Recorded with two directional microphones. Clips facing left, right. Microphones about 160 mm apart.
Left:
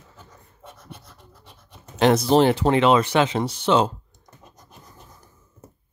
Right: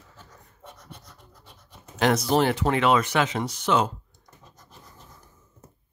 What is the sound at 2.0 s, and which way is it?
Speech, 25° left (ahead or behind).